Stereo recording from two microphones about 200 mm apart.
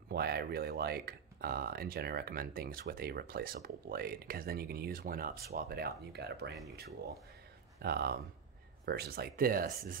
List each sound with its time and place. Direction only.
0.1 s speech: 50° right (ahead or behind)
7.8 s speech: 50° right (ahead or behind)